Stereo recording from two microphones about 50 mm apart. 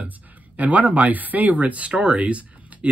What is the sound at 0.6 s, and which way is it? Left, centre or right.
Speech, right.